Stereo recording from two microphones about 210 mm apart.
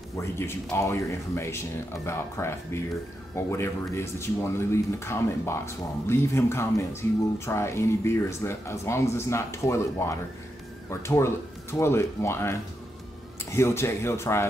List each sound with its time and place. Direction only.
0.2 s speech: 10° left (ahead or behind)